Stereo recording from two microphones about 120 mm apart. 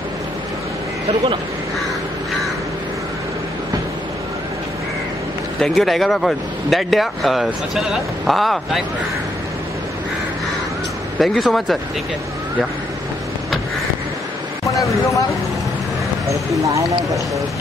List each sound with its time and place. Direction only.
5.6 s speech: centre (ahead or behind)
11.1 s speech: centre (ahead or behind)
14.7 s speech: 25° left (ahead or behind)
16.3 s speech: 25° right (ahead or behind)